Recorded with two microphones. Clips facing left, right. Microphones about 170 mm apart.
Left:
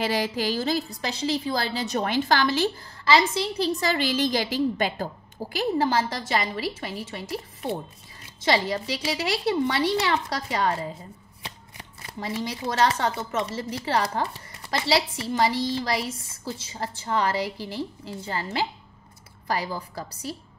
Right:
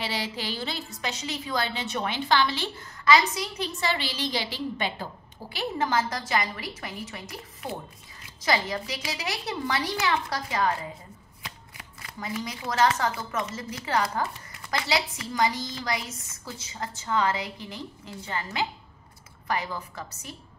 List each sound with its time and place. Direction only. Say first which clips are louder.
0.0 s a woman's voice: left 7 dB; 45° left (ahead or behind)